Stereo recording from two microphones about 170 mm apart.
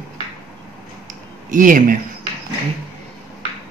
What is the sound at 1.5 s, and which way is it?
Speech, 50° right (ahead or behind).